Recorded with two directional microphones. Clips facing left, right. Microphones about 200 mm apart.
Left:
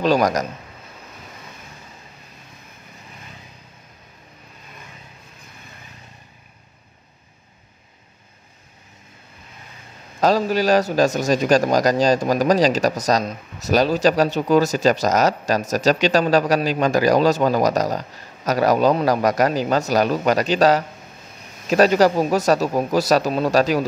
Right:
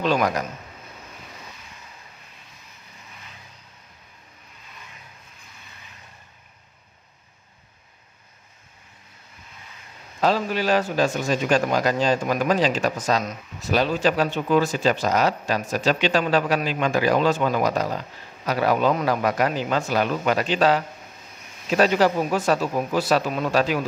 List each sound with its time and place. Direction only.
0.0 s speech: 40° left (ahead or behind)
10.2 s speech: 40° left (ahead or behind)